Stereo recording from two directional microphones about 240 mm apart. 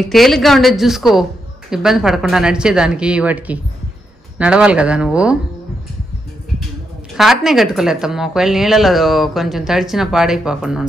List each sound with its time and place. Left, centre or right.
0.0 s speech: centre
7.2 s speech: centre